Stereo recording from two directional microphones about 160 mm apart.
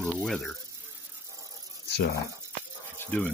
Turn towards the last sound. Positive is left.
turn(degrees=5)  # may be behind; listen again after turning